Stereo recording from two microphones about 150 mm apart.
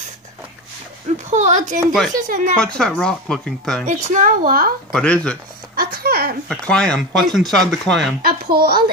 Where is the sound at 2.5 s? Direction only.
5° left (ahead or behind).